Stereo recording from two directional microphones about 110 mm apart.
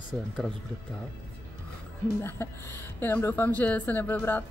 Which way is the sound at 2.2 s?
20° left (ahead or behind).